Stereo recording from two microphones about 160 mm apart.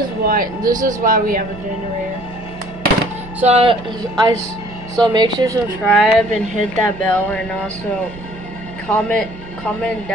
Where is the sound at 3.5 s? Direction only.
35° right (ahead or behind).